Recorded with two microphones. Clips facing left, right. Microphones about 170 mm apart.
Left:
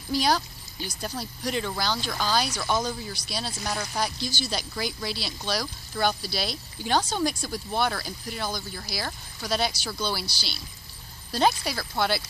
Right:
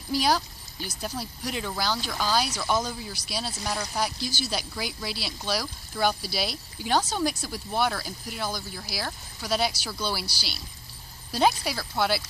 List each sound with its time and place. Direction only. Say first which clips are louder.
0.1 s speech: even; 5° right (ahead or behind)